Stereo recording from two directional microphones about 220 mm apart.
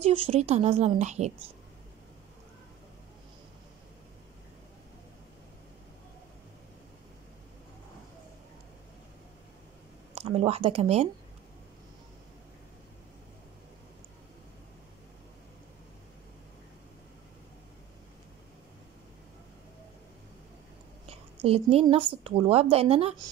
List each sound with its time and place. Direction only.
0.0 s speech: 25° right (ahead or behind)
10.1 s speech: 25° right (ahead or behind)
21.1 s speech: 25° right (ahead or behind)